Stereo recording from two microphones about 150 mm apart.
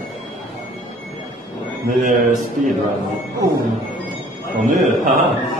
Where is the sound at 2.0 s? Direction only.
55° right (ahead or behind).